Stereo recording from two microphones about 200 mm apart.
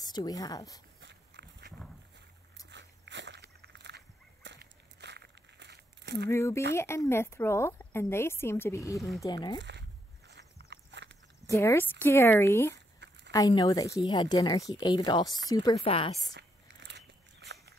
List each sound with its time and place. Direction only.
0.0 s a woman's voice: 20° left (ahead or behind)
1.0 s walk: 55° right (ahead or behind)
2.7 s dog: 60° right (ahead or behind)
6.3 s a woman's voice: 15° left (ahead or behind)
9.6 s a sound: 60° right (ahead or behind)
10.7 s walk: 60° right (ahead or behind)
11.4 s a woman's voice: 15° left (ahead or behind)
12.7 s crumpling: 60° right (ahead or behind)
13.3 s a woman's voice: 20° left (ahead or behind)
16.3 s a sound: 60° right (ahead or behind)